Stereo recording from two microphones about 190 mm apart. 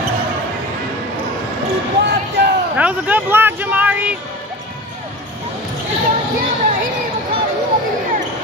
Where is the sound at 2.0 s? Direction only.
60° right (ahead or behind).